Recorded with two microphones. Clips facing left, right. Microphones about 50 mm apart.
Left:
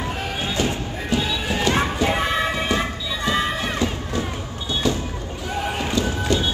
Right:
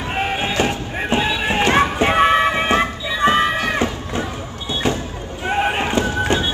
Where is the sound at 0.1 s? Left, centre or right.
Right.